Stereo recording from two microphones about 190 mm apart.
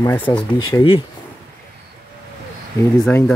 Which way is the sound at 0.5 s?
25° left (ahead or behind).